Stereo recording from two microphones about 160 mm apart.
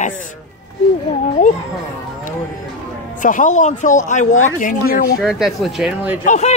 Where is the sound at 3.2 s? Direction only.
55° left (ahead or behind).